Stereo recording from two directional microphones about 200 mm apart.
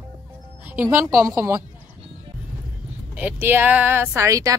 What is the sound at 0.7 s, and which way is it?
Speech, 15° right (ahead or behind).